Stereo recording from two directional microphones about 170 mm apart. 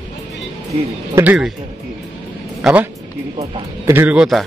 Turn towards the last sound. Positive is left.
turn(degrees=-5)  # may be behind; listen again after turning